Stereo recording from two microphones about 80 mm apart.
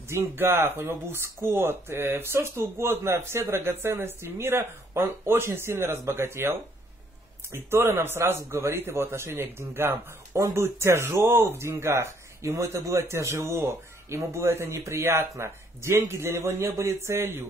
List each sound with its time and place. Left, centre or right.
0.1 s speech: right
7.5 s speech: right